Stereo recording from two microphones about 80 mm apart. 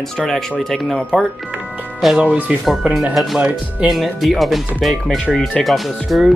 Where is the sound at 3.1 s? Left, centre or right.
Centre.